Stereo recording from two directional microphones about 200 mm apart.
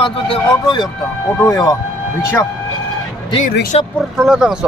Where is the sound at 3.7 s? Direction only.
30° left (ahead or behind).